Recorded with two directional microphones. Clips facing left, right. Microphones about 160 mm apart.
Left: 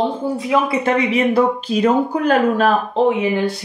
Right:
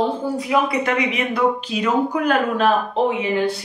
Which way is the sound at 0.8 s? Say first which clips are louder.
Left 5 dB; 30° left (ahead or behind).